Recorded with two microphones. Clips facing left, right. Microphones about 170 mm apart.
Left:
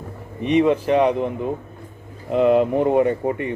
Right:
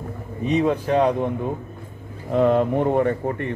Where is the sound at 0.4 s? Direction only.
65° left (ahead or behind).